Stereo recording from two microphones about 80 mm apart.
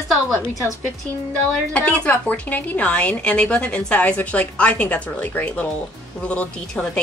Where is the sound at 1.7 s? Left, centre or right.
Centre.